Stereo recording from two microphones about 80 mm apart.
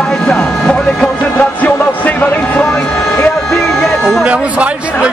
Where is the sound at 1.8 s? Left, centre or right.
Left.